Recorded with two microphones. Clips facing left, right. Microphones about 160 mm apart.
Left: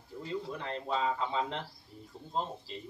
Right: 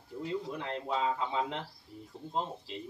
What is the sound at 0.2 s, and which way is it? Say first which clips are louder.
Speech: right 2 dB; 15° right (ahead or behind).